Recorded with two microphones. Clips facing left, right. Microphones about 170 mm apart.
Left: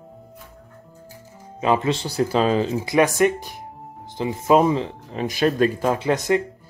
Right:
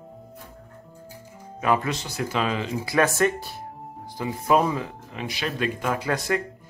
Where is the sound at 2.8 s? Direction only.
15° left (ahead or behind).